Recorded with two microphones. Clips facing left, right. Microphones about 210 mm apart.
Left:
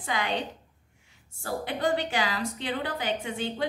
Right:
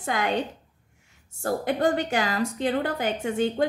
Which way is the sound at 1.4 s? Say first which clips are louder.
Right 5 dB; 45° right (ahead or behind).